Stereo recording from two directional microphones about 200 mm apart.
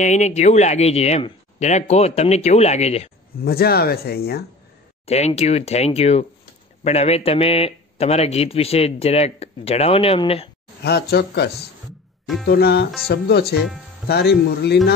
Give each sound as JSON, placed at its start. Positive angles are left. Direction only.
{"t": 0.0, "sound": "speech", "side_deg": 35}
{"t": 3.4, "sound": "speech", "side_deg": 50}
{"t": 5.0, "sound": "speech", "side_deg": 35}
{"t": 10.8, "sound": "speech", "side_deg": 55}